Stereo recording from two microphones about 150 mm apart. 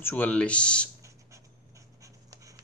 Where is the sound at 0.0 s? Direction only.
10° left (ahead or behind).